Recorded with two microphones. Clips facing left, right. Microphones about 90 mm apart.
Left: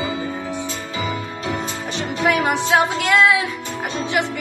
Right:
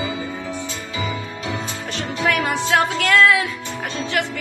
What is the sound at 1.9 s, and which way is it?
Music, 20° left (ahead or behind).